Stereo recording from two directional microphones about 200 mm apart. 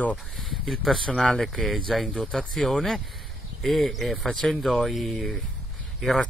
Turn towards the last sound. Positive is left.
turn(degrees=0)  # may be behind; listen again after turning